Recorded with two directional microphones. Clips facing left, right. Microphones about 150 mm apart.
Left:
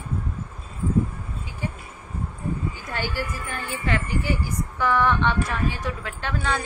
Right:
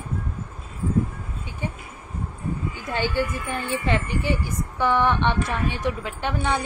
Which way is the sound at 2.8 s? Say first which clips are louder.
Right 5 dB; 20° right (ahead or behind).